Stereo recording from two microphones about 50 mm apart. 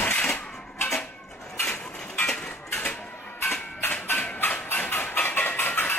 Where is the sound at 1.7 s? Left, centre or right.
Left.